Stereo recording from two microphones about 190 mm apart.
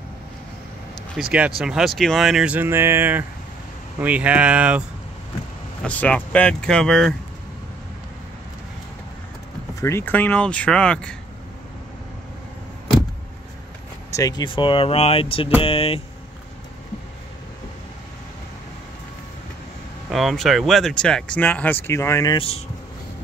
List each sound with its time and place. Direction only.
1.3 s speech: 5° right (ahead or behind)
5.8 s speech: 5° left (ahead or behind)
9.8 s speech: 15° left (ahead or behind)
14.1 s speech: 20° left (ahead or behind)
20.1 s speech: centre (ahead or behind); by 22.4 s 15° left (ahead or behind)